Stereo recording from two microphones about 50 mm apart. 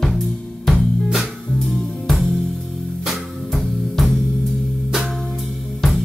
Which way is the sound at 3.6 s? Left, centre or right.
Centre.